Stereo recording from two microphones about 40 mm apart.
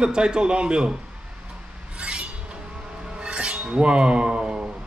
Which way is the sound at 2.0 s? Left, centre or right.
Right.